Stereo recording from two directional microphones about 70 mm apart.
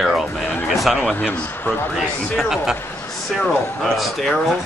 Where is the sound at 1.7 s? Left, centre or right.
Left.